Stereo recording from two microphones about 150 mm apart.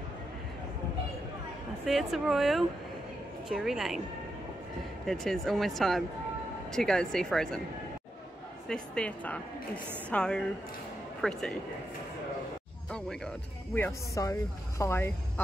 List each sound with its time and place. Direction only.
1.9 s speech: centre (ahead or behind)
5.0 s speech: 5° left (ahead or behind)
8.6 s speech: 5° left (ahead or behind)
12.9 s speech: 5° left (ahead or behind)
13.7 s speech: 15° left (ahead or behind)